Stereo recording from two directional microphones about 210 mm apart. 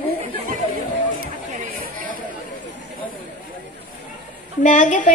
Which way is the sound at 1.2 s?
40° right (ahead or behind).